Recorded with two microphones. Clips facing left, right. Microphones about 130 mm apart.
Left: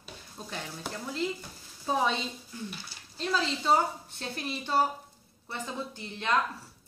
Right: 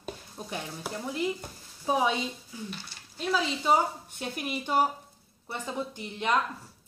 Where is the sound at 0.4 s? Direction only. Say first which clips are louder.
Right 1 dB; 15° right (ahead or behind).